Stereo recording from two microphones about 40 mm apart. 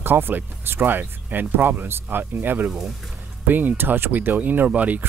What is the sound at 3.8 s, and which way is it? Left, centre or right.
Speech, right.